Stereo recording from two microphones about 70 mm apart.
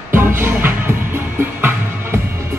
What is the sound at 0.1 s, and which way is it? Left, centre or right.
Music, right.